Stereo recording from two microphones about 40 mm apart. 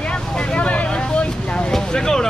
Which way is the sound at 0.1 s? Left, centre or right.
Left.